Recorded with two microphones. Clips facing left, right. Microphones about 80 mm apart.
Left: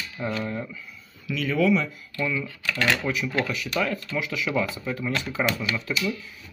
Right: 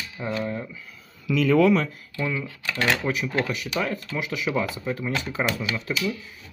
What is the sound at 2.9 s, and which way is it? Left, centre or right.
Speech, right.